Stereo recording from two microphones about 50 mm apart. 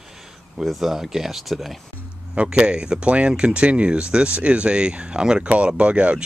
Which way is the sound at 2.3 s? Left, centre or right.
Right.